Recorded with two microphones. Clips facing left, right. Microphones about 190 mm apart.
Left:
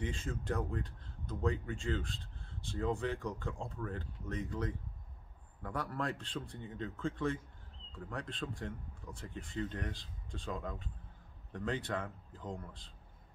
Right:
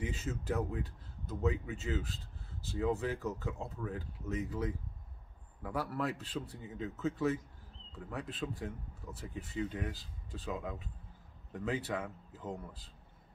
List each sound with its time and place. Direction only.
0.0 s speech: 5° right (ahead or behind)